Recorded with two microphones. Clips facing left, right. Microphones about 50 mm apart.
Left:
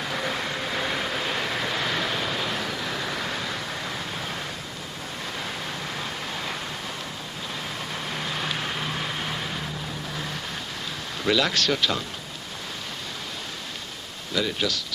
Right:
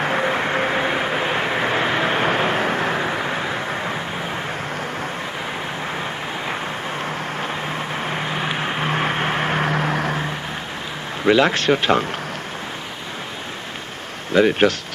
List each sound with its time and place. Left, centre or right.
0.0 s vehicle: right
5.9 s vehicle: right
11.2 s speech: right
14.3 s speech: right